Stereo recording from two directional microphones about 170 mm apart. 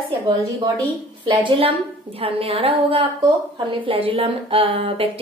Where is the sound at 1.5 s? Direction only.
30° right (ahead or behind).